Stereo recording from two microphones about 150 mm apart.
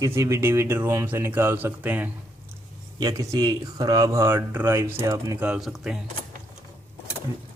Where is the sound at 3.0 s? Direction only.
25° right (ahead or behind).